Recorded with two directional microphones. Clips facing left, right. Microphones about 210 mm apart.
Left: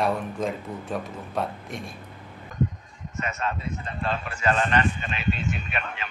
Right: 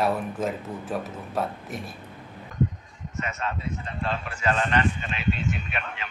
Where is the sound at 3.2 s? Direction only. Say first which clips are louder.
Left 1 dB; 45° left (ahead or behind).